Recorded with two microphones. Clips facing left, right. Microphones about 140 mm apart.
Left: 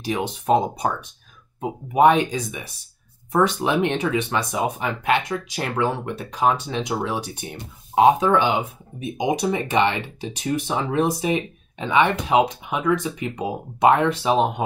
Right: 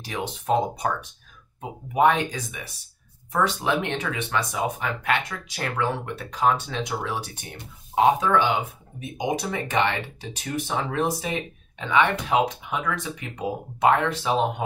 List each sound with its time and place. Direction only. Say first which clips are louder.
0.0 s speech: left 6 dB; 15° left (ahead or behind)
1.6 s speech: left 4 dB; 20° left (ahead or behind)